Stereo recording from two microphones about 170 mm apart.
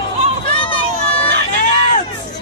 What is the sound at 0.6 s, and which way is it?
Vehicle, 30° left (ahead or behind).